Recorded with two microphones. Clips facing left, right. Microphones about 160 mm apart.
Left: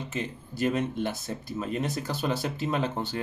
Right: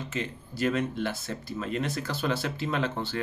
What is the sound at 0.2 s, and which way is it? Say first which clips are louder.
Speech: left 1 dB; 15° left (ahead or behind).